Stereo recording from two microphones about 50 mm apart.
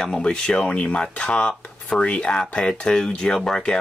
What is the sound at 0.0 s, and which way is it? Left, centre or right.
Speech, centre.